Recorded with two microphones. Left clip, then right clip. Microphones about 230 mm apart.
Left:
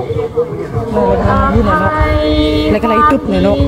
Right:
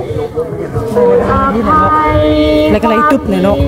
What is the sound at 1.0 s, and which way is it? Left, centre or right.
Speech, left.